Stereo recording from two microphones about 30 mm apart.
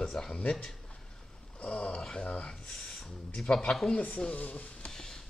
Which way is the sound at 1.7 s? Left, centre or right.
Left.